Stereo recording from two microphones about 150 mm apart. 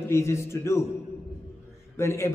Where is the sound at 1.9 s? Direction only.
20° left (ahead or behind).